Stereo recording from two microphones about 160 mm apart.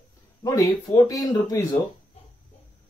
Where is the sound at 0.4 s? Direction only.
20° left (ahead or behind).